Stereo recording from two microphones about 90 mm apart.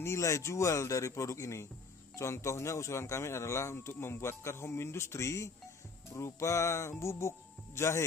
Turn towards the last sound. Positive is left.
turn(degrees=30)  # may be behind; listen again after turning